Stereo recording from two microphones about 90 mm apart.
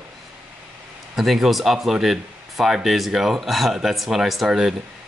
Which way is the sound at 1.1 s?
Centre (ahead or behind).